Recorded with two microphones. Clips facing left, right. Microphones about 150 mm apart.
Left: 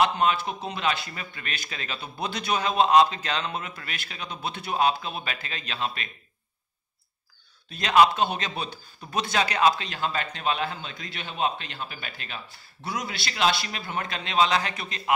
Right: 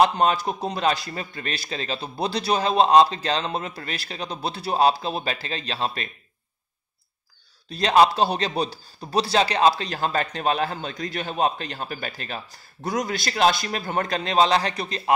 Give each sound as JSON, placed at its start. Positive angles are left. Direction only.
{"t": 0.0, "sound": "a man's voice", "side_deg": -40}
{"t": 7.7, "sound": "a man's voice", "side_deg": -35}